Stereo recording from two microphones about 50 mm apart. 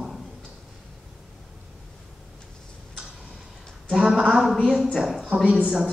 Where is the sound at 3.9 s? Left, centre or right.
Centre.